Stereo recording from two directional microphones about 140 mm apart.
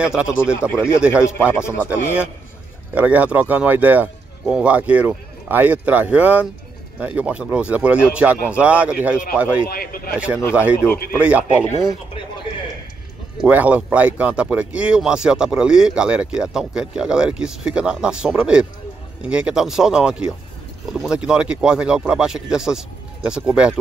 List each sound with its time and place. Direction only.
0.0 s speech: 5° right (ahead or behind)
0.7 s speech: 20° left (ahead or behind)
2.9 s speech: 10° right (ahead or behind)
9.7 s speech: 90° left
10.1 s speech: 10° right (ahead or behind)
13.4 s speech: 10° right (ahead or behind)